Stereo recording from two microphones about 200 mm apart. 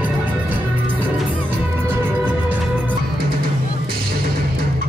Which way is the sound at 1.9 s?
10° right (ahead or behind).